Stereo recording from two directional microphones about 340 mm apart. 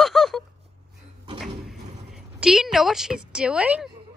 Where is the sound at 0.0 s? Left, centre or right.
Centre.